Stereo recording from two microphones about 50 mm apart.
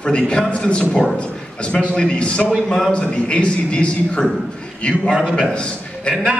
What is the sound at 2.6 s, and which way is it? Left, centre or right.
Speech, centre.